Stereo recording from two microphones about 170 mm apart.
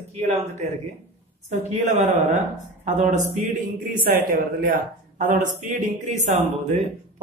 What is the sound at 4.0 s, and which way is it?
A man's voice, 55° right (ahead or behind).